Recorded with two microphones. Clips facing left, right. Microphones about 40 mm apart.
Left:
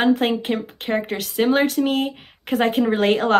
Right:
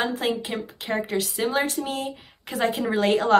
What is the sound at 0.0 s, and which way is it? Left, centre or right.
A woman's voice, left.